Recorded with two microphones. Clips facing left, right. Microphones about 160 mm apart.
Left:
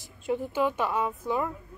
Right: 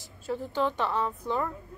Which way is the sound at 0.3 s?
10° left (ahead or behind).